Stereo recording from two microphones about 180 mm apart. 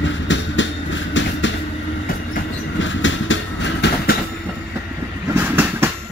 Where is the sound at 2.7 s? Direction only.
90° left; by 4.1 s 75° left (ahead or behind).